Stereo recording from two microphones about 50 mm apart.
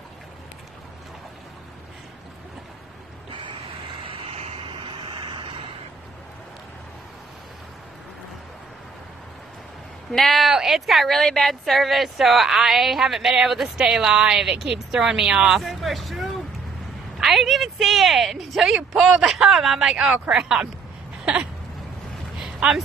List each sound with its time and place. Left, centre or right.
10.1 s a woman's voice: centre
22.6 s speech: right